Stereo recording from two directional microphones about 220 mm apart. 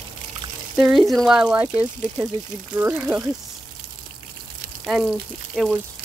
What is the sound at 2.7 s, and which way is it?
Speech, 5° right (ahead or behind).